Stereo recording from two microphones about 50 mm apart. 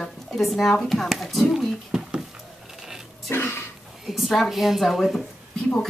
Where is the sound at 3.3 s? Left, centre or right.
Left.